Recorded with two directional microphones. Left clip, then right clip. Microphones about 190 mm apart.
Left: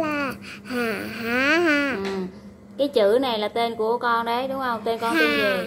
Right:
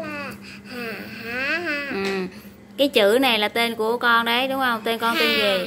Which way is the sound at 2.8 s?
10° right (ahead or behind).